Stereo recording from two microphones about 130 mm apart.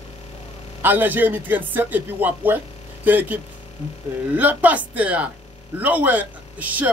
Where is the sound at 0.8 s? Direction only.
15° right (ahead or behind).